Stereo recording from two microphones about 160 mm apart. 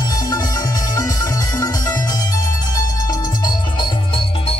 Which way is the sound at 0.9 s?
20° left (ahead or behind).